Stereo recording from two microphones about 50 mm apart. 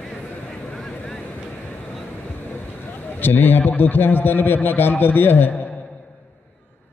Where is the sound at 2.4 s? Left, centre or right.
Left.